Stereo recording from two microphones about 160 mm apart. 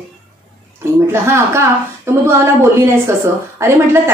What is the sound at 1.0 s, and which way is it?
A woman's voice, 15° right (ahead or behind).